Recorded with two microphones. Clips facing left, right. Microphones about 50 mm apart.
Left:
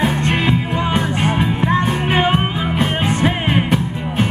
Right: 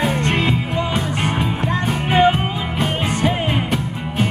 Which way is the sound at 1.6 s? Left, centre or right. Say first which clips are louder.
Left 4 dB; left.